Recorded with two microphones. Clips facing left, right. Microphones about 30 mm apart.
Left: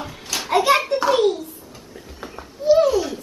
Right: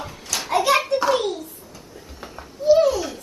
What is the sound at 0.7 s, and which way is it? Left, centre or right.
Hands, centre.